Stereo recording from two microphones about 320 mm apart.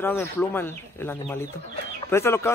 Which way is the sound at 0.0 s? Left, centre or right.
Centre.